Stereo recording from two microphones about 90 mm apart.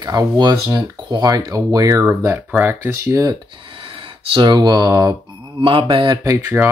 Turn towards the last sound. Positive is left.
turn(degrees=-20)  # may be behind; listen again after turning